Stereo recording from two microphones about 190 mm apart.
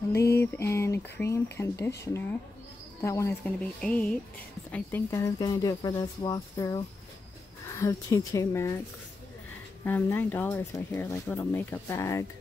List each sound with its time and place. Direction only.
0.1 s speech: 15° left (ahead or behind)
3.8 s speech: 5° left (ahead or behind)
9.8 s speech: 10° left (ahead or behind)